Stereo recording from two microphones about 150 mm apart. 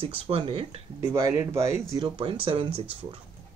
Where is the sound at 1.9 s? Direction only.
30° right (ahead or behind).